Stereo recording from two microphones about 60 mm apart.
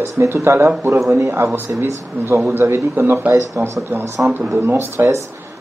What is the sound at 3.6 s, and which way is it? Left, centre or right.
Speech, right.